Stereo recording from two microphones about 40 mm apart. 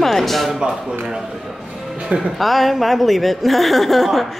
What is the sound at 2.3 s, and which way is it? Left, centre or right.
A woman's voice, centre.